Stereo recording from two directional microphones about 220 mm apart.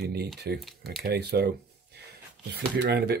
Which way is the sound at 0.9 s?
45° right (ahead or behind).